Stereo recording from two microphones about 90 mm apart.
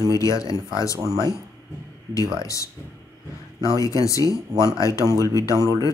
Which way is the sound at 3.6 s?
40° left (ahead or behind).